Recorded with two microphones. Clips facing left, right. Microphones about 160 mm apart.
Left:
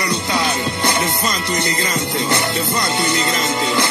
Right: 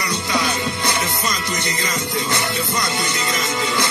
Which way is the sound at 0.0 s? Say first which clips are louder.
Left 2 dB; 30° left (ahead or behind).